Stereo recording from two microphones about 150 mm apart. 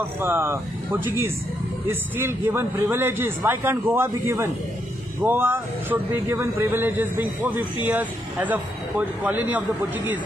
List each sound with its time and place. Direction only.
0.2 s a man's voice: 15° right (ahead or behind)
1.9 s a man's voice: 15° right (ahead or behind)